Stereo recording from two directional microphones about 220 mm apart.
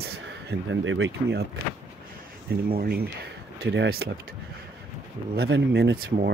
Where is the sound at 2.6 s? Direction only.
45° right (ahead or behind).